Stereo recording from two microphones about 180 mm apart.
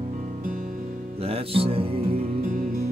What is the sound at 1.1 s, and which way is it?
Music, 35° right (ahead or behind).